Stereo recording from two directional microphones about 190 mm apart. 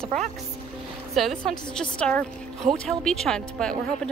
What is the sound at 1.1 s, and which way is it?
A woman's voice, centre (ahead or behind).